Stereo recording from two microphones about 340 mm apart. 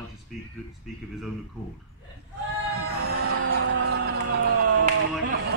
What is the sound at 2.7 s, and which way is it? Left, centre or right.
Music, right.